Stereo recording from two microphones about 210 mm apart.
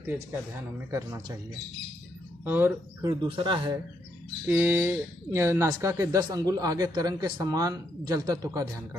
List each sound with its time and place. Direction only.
2.4 s speech: 10° right (ahead or behind)
3.1 s speech: 25° right (ahead or behind)
4.5 s speech: 10° right (ahead or behind)